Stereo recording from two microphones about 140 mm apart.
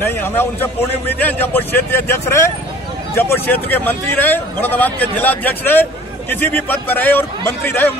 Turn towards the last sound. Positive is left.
turn(degrees=15)  # may be behind; listen again after turning